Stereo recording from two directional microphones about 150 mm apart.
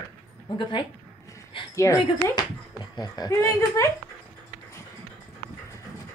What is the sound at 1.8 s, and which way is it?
Speech, 20° left (ahead or behind).